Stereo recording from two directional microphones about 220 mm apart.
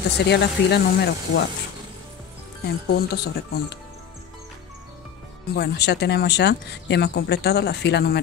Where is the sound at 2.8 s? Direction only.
45° left (ahead or behind).